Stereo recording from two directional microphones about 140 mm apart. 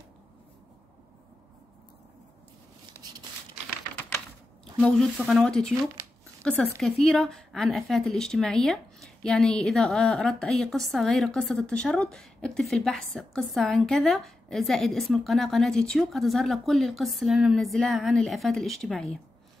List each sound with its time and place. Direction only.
4.7 s speech: 5° left (ahead or behind)